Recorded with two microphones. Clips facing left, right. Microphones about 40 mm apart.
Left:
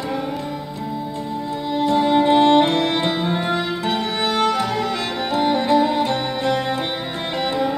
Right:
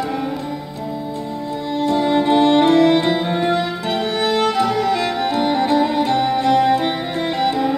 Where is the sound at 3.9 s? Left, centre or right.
Centre.